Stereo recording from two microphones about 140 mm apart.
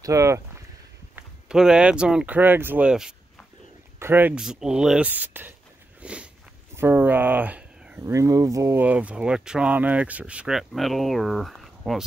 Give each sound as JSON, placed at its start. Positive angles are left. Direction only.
{"t": 0.0, "sound": "speech", "side_deg": -20}
{"t": 1.1, "sound": "speech", "side_deg": -5}
{"t": 5.9, "sound": "a sound", "side_deg": -10}
{"t": 6.7, "sound": "speech", "side_deg": -15}
{"t": 8.0, "sound": "speech", "side_deg": -20}